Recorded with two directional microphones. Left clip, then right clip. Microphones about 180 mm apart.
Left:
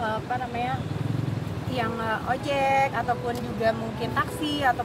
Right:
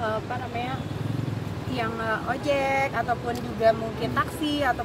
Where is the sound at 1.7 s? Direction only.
15° left (ahead or behind).